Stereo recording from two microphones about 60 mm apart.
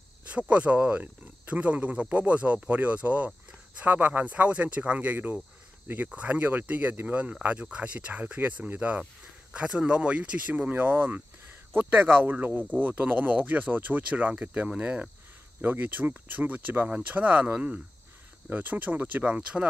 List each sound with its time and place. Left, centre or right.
0.3 s speech: right